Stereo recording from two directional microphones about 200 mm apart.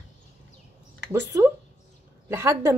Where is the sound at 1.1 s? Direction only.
15° right (ahead or behind).